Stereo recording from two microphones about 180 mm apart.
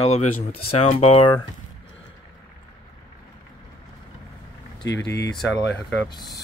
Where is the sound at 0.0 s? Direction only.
40° left (ahead or behind).